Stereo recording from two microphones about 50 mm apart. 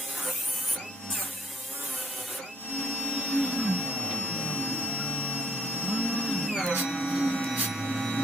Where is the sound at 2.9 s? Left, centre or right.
Left.